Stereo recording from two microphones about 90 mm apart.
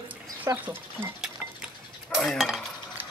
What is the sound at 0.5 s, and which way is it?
Speech, 35° right (ahead or behind).